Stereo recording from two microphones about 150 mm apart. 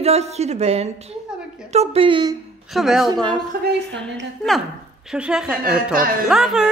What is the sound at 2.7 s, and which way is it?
A man's voice, centre (ahead or behind).